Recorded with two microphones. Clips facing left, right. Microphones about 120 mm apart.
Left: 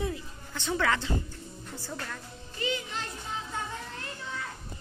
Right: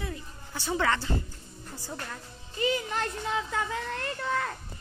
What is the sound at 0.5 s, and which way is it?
A woman's voice, 5° right (ahead or behind).